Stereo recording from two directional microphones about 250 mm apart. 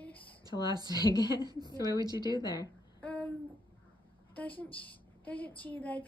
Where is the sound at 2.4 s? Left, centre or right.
Centre.